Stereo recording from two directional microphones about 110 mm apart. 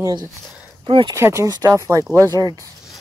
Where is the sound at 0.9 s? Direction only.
50° right (ahead or behind).